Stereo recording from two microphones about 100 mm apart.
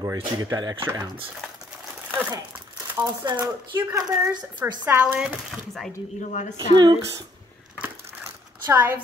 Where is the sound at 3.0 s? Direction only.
30° right (ahead or behind).